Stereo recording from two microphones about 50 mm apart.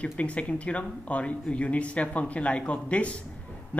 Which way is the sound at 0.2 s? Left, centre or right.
Left.